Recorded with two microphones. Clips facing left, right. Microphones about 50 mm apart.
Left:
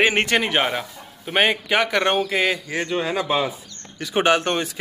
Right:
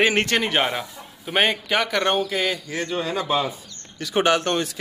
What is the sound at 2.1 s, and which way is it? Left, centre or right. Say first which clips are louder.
A man's voice: left 2 dB; left.